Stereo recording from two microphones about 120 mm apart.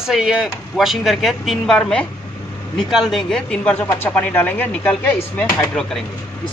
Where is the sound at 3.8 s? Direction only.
25° left (ahead or behind).